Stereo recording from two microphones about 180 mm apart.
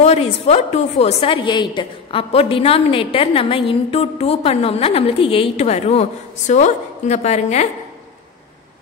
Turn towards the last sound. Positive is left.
turn(degrees=40)  # may be behind; listen again after turning